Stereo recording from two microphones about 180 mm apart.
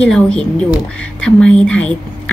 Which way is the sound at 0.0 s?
5° left (ahead or behind).